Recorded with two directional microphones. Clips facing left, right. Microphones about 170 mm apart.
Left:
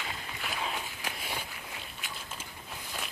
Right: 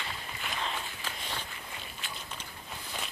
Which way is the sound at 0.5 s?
5° left (ahead or behind).